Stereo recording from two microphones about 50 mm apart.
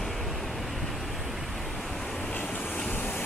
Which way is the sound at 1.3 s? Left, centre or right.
Centre.